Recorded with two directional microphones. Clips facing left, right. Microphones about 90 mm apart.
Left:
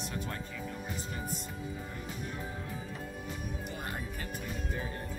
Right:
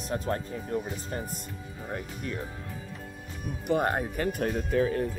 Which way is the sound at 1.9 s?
75° right (ahead or behind).